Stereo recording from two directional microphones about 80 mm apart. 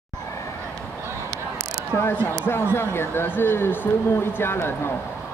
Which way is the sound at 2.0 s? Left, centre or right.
Left.